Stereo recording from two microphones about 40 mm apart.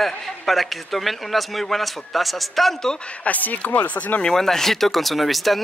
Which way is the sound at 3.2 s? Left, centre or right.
Left.